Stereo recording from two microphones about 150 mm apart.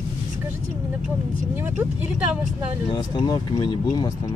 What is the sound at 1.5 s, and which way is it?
Speech, 15° right (ahead or behind).